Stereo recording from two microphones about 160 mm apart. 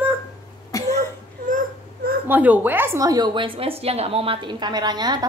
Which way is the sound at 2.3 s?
10° right (ahead or behind).